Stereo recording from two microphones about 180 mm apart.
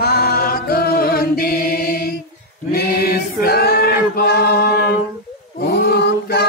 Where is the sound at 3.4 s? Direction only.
60° left (ahead or behind).